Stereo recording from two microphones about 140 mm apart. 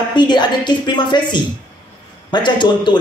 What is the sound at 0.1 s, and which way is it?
A man's voice, 30° left (ahead or behind).